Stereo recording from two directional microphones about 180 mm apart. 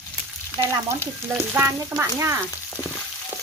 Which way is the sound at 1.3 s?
15° right (ahead or behind).